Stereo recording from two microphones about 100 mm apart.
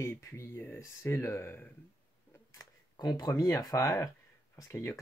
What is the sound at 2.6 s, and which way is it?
Camera, 40° left (ahead or behind).